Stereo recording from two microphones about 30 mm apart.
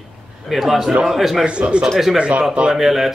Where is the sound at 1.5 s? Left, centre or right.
Right.